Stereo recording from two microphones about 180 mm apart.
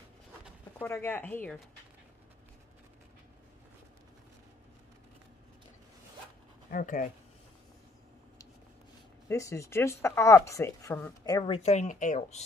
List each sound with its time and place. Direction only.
0.7 s a woman's voice: 10° left (ahead or behind)
6.7 s speech: 45° left (ahead or behind)
9.3 s a woman's voice: 15° left (ahead or behind); by 12.4 s 40° left (ahead or behind)